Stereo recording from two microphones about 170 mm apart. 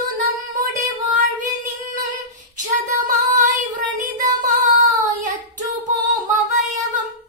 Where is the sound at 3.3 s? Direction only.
45° right (ahead or behind).